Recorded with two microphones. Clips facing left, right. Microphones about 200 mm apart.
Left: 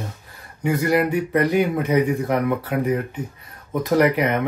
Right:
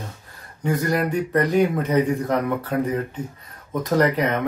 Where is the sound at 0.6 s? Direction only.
15° left (ahead or behind).